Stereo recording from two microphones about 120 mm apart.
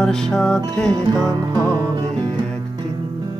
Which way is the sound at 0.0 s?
5° left (ahead or behind).